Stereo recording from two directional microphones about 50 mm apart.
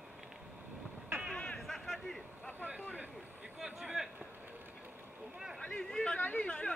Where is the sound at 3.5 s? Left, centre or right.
Centre.